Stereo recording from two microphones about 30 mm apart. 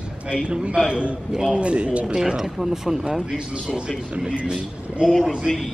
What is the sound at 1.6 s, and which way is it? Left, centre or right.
Speech, right.